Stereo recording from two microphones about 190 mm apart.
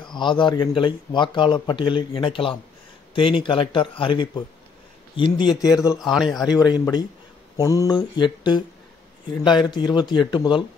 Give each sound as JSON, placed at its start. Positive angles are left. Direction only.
{"t": 0.0, "sound": "speech", "side_deg": 25}
{"t": 5.6, "sound": "a man's voice", "side_deg": -5}
{"t": 6.5, "sound": "speech", "side_deg": 20}
{"t": 9.7, "sound": "speech", "side_deg": 25}